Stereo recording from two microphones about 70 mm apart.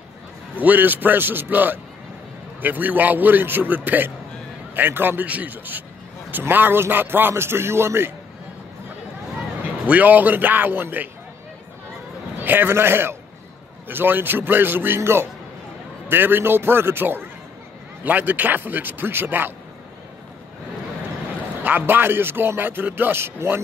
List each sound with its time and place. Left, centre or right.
0.6 s a man's voice: right
9.6 s speech: right
12.4 s a man's voice: right
21.6 s speech: right